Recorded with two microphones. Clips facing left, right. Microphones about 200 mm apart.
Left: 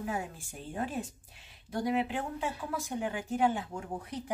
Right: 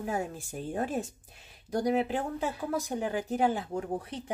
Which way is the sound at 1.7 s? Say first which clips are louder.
Right 3 dB; 40° right (ahead or behind).